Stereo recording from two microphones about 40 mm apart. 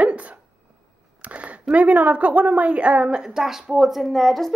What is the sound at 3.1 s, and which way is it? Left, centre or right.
A woman's voice, centre.